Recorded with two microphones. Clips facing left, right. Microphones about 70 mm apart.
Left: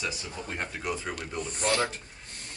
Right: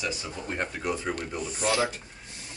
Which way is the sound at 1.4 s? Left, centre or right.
Left.